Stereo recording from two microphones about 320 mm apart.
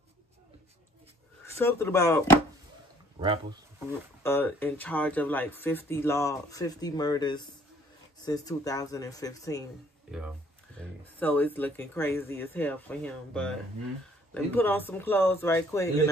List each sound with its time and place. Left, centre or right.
1.6 s speech: centre
3.2 s speech: centre
4.2 s speech: centre
10.1 s speech: centre